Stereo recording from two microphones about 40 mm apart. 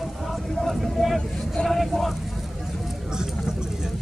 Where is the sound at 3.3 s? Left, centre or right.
Centre.